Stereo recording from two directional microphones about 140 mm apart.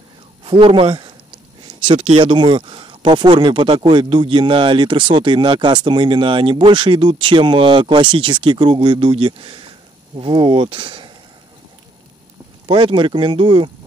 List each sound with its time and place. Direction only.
0.4 s speech: 40° right (ahead or behind)
12.6 s speech: 35° right (ahead or behind)